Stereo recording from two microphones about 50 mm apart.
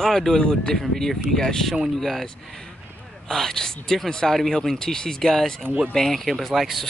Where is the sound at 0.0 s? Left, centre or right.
Centre.